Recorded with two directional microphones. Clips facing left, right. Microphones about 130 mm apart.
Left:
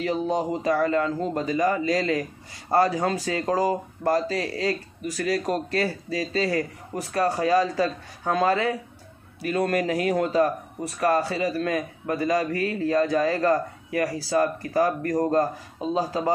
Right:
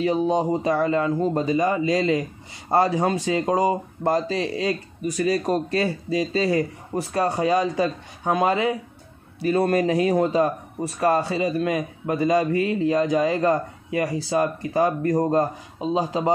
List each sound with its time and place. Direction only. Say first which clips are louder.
0.0 s speech: right 4 dB; 20° right (ahead or behind)
9.4 s speech: right 4 dB; 30° right (ahead or behind)